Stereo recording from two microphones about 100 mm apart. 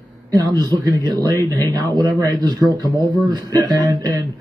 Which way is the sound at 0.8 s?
35° right (ahead or behind).